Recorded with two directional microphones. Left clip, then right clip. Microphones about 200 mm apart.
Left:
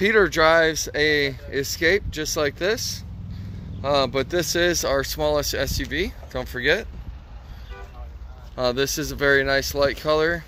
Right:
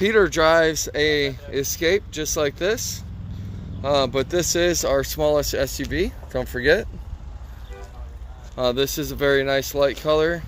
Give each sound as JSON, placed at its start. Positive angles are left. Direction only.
{"t": 0.0, "sound": "speech", "side_deg": -5}
{"t": 8.5, "sound": "speech", "side_deg": -5}